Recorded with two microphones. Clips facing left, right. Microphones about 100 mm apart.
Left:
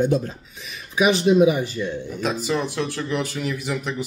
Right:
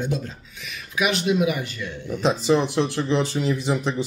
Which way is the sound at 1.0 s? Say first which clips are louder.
Left 5 dB; 35° left (ahead or behind).